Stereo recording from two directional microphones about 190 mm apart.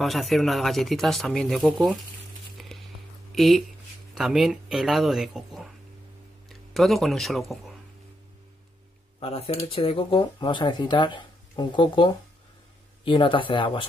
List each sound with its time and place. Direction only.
0.0 s speech: centre (ahead or behind)
2.5 s a sound: centre (ahead or behind)
3.3 s speech: centre (ahead or behind)
9.2 s speech: 30° left (ahead or behind)